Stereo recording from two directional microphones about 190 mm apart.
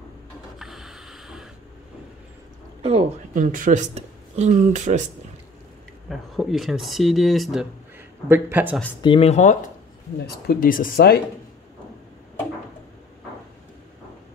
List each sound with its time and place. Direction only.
0.6 s snort: centre (ahead or behind)
2.8 s speech: 30° right (ahead or behind)
3.3 s speech: 45° right (ahead or behind)
6.0 s speech: centre (ahead or behind)
8.3 s speech: 10° right (ahead or behind)
9.0 s speech: 30° left (ahead or behind)
10.2 s speech: 55° left (ahead or behind)